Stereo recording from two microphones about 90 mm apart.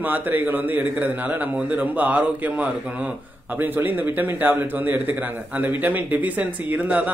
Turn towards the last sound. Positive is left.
turn(degrees=-20)  # may be behind; listen again after turning